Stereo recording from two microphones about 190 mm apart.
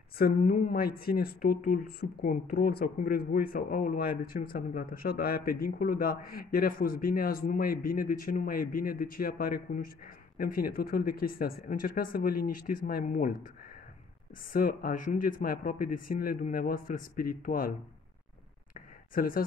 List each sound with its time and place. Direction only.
0.2 s speech: 45° left (ahead or behind)
14.5 s speech: 50° left (ahead or behind)
19.1 s speech: 50° left (ahead or behind)